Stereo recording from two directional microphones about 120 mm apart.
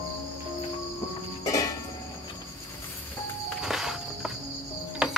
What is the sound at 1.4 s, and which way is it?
Music, 25° left (ahead or behind).